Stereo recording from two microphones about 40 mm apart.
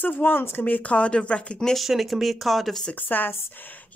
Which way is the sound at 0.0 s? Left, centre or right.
Left.